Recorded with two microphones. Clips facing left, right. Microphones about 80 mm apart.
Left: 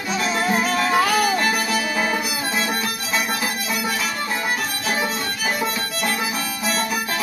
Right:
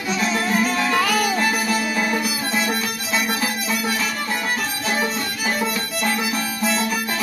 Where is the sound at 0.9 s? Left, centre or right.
Left.